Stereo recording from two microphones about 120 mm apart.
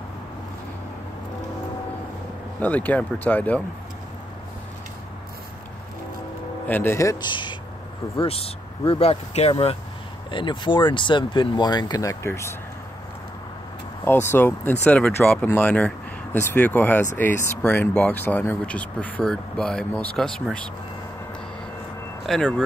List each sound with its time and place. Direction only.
2.6 s speech: 15° left (ahead or behind)
6.7 s speech: 20° left (ahead or behind)
7.2 s speech: 40° left (ahead or behind)
8.2 s speech: 50° left (ahead or behind)
10.3 s speech: 40° left (ahead or behind); by 12.5 s 20° left (ahead or behind)
14.0 s speech: 20° left (ahead or behind)
22.2 s speech: 5° left (ahead or behind)